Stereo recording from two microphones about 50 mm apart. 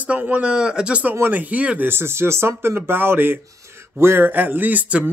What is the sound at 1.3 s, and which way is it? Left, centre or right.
Speech, right.